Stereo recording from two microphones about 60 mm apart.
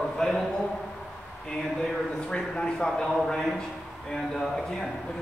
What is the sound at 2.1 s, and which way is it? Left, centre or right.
Speech, centre.